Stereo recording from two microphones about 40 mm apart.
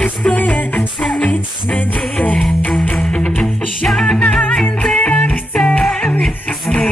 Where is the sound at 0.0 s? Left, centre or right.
Left.